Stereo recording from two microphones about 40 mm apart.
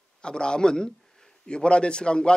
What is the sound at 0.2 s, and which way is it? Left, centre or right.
Speech, left.